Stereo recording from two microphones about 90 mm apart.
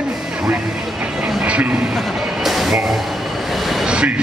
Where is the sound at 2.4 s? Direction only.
Centre (ahead or behind).